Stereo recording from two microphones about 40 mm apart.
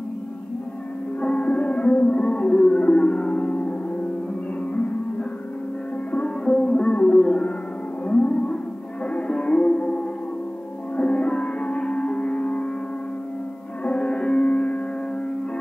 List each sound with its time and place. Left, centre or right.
1.2 s music: left
6.1 s sitar: left
6.9 s music: left
13.8 s music: left
14.5 s music: left